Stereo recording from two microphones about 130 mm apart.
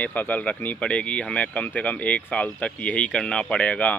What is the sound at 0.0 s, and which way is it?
Speech, 15° left (ahead or behind).